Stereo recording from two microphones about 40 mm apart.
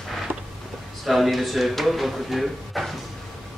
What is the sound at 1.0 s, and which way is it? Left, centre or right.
Speech, centre.